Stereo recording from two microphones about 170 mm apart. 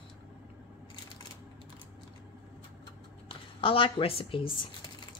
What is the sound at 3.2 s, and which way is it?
Speech, 30° left (ahead or behind).